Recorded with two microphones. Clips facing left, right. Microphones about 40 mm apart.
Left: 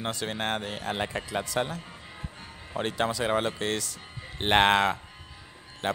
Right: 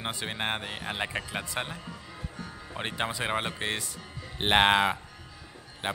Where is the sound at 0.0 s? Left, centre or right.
Right.